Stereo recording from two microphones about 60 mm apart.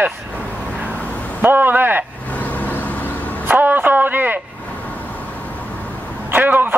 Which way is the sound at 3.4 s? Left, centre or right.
Right.